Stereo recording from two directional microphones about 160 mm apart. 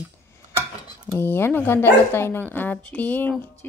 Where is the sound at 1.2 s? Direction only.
15° left (ahead or behind).